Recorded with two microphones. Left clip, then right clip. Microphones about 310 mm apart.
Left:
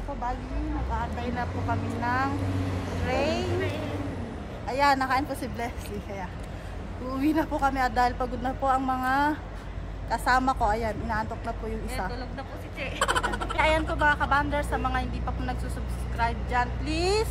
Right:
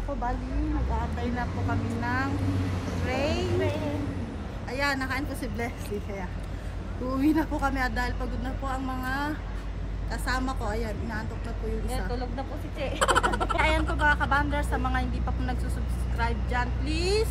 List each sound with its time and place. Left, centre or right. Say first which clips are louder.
2.0 s a woman's voice: left 3 dB; centre
4.6 s a woman's voice: left 6 dB; centre
12.1 s a woman's voice: right 3 dB; centre